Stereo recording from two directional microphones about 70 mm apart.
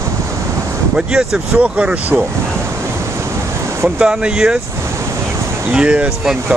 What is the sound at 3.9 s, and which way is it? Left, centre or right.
Speech, centre.